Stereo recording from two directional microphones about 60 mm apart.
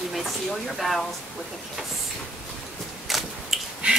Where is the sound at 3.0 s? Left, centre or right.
Centre.